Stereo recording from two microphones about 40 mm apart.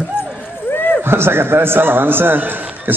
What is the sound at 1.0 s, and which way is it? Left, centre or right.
Speech, right.